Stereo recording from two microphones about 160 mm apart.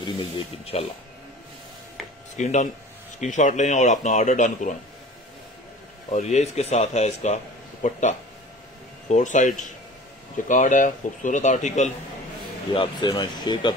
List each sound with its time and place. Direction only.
0.0 s speech: 30° left (ahead or behind)
2.3 s speech: 50° left (ahead or behind)
6.1 s speech: 45° left (ahead or behind)
12.7 s speech: 30° left (ahead or behind)